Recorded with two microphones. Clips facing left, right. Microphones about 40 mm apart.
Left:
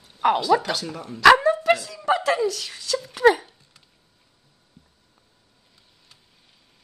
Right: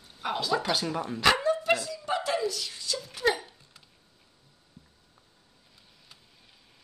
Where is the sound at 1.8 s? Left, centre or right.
Left.